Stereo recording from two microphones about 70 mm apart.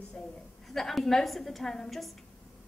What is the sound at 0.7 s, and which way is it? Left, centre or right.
A woman's voice, centre.